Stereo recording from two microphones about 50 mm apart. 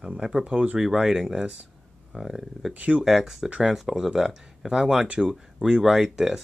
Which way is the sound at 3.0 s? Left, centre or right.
Centre.